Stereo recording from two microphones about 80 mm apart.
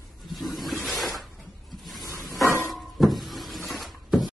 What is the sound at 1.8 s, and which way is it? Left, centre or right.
Snake, centre.